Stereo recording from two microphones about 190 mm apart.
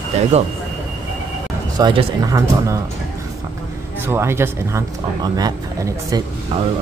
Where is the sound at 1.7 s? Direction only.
20° right (ahead or behind).